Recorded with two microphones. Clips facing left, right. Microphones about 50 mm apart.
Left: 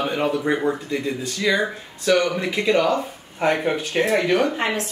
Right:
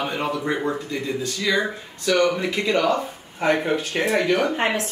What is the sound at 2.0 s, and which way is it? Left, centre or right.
Speech, centre.